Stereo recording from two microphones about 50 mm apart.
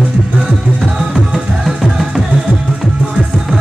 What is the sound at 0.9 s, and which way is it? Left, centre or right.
Music, right.